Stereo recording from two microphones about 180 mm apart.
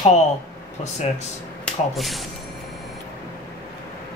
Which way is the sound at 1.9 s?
Centre (ahead or behind).